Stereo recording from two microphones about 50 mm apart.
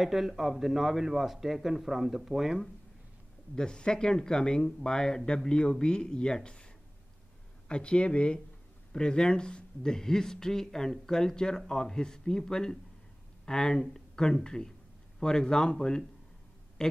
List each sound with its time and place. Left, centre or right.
0.0 s speech: centre
3.5 s a woman's voice: centre